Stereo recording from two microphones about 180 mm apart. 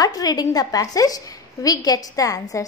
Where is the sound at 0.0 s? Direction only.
20° left (ahead or behind).